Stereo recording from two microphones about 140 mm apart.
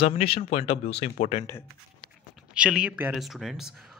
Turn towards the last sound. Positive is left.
turn(degrees=0)  # may be behind; listen again after turning